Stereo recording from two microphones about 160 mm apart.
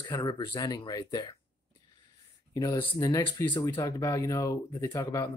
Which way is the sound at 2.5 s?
25° left (ahead or behind).